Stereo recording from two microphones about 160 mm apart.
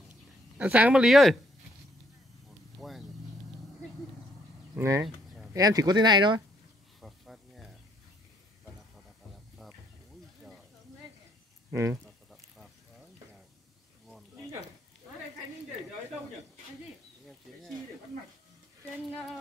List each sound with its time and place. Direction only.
0.6 s speech: 10° right (ahead or behind)
2.8 s vehicle: centre (ahead or behind)
4.7 s speech: 20° right (ahead or behind)
7.0 s a sound: centre (ahead or behind)
11.7 s speech: 20° right (ahead or behind)
12.3 s a sound: centre (ahead or behind)